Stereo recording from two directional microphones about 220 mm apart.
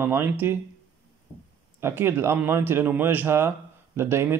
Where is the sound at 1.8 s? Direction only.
10° right (ahead or behind).